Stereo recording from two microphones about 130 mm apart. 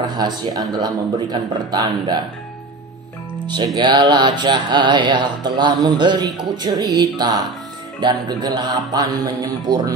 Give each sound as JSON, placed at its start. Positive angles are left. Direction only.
{"t": 0.0, "sound": "music", "side_deg": -30}
{"t": 3.4, "sound": "music", "side_deg": -35}